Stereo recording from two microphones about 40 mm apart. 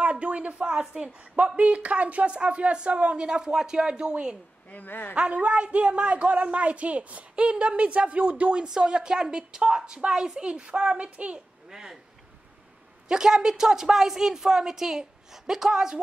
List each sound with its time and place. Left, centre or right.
0.0 s speech: right
0.7 s a woman's voice: right
4.6 s a woman's voice: left
5.1 s a man's voice: right
8.6 s a woman's voice: centre
11.7 s a sound: centre
13.1 s a woman's voice: centre